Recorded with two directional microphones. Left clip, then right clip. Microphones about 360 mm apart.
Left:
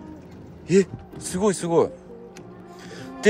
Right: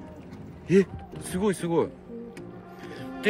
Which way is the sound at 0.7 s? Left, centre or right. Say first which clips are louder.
Left 3 dB; centre.